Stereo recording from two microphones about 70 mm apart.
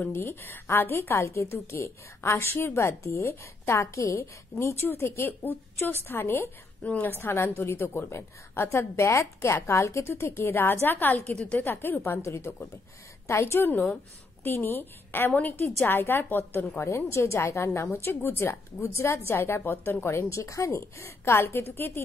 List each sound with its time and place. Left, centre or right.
0.0 s a woman's voice: left
6.8 s a woman's voice: left
11.3 s a woman's voice: centre
11.6 s a woman's voice: left
16.7 s a woman's voice: left